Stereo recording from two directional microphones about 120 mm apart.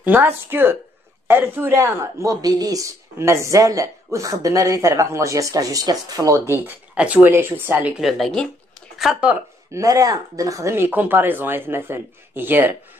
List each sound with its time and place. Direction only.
0.0 s speech: 15° right (ahead or behind)
7.0 s speech: 10° right (ahead or behind)
8.0 s speech: centre (ahead or behind)
9.3 s speech: 25° right (ahead or behind)